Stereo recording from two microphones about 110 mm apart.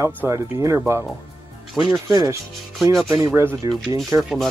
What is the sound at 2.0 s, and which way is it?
Speech, 35° right (ahead or behind).